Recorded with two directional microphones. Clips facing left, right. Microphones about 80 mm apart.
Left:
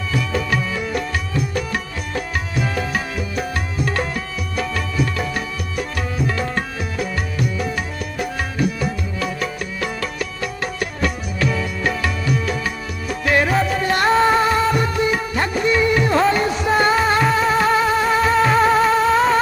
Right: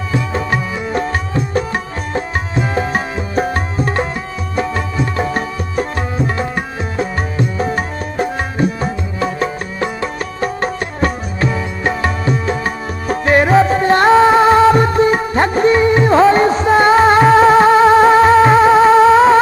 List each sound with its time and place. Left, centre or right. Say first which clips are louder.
0.1 s music: right 3 dB; right